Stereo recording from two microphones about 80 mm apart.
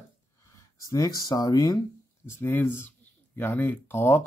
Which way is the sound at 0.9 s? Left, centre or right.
Left.